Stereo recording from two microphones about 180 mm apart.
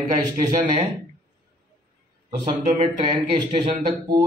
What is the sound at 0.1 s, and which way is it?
Speech, 20° right (ahead or behind).